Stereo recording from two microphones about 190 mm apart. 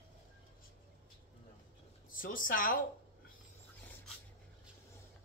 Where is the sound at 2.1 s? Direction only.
45° left (ahead or behind).